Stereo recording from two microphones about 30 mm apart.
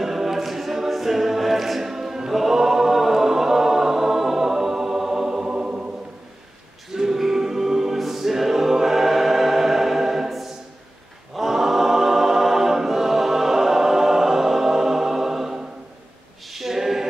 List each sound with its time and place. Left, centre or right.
0.0 s a capella: centre
5.5 s choir: right
6.9 s a capella: centre
8.0 s choir: centre
16.4 s a capella: centre